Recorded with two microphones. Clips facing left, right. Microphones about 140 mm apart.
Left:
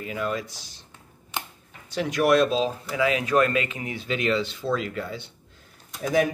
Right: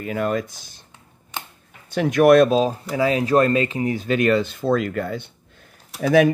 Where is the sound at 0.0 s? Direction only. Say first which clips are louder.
Right 6 dB; 50° right (ahead or behind).